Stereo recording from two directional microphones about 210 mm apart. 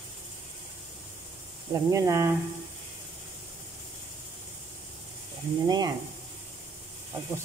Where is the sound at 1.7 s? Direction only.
15° right (ahead or behind).